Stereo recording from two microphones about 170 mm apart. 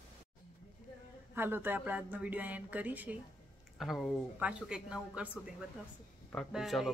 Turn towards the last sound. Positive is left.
turn(degrees=0)  # may be behind; listen again after turning